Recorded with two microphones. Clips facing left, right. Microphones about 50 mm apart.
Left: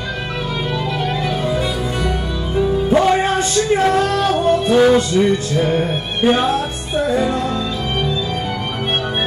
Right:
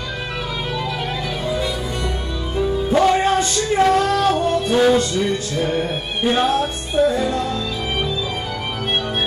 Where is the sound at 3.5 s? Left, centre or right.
Centre.